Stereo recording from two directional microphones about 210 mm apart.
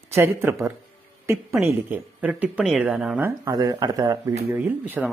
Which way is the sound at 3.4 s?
15° right (ahead or behind).